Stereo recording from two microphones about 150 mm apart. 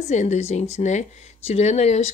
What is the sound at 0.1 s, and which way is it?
Speech, 50° left (ahead or behind).